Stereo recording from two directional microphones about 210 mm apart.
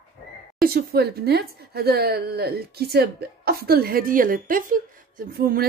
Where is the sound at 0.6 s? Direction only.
45° right (ahead or behind).